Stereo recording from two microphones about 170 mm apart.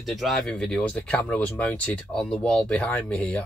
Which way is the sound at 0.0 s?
Centre (ahead or behind).